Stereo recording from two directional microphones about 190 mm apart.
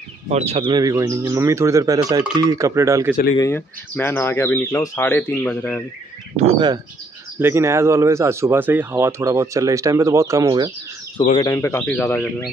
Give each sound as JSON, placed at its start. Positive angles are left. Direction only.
{"t": 0.3, "sound": "speech", "side_deg": -35}
{"t": 3.3, "sound": "speech", "side_deg": 15}
{"t": 6.3, "sound": "speech", "side_deg": -30}
{"t": 7.3, "sound": "speech", "side_deg": -15}
{"t": 11.4, "sound": "speech", "side_deg": 15}